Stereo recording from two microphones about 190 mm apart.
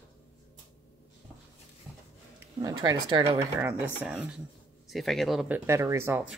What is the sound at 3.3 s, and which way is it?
Speech, 10° right (ahead or behind).